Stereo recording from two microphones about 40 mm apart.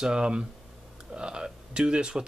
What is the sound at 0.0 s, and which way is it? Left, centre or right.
Speech, right.